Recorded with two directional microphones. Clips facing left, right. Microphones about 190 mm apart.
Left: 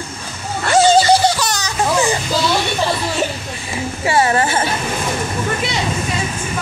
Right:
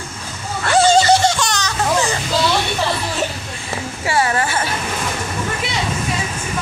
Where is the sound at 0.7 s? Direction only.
5° left (ahead or behind).